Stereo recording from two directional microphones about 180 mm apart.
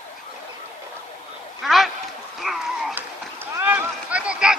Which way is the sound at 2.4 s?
Centre (ahead or behind).